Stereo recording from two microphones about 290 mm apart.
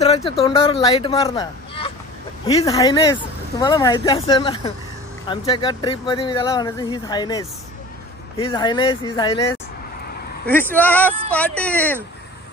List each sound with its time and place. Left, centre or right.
0.0 s speech: left; by 12.0 s centre